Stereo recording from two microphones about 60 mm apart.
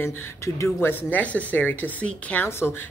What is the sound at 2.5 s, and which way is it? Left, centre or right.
Speech, left.